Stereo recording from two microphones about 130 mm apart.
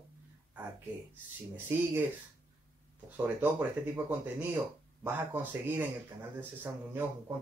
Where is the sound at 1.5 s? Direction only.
15° right (ahead or behind).